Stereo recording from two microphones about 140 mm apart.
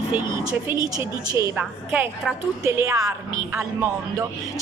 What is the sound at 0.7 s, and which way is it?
Speech, 25° right (ahead or behind).